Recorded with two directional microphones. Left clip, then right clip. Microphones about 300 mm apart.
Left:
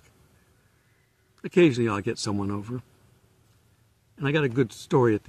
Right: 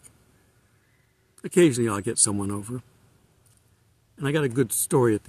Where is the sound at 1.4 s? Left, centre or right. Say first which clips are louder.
Right 1 dB; centre.